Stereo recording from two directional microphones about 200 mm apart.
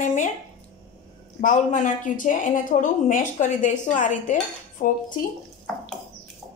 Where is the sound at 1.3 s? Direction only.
40° left (ahead or behind).